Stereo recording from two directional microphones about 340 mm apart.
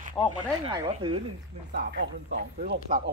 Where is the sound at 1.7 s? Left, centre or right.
Right.